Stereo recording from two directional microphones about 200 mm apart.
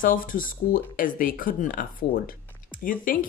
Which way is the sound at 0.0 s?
45° left (ahead or behind).